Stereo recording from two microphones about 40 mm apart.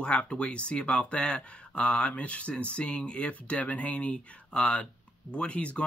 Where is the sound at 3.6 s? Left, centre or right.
Left.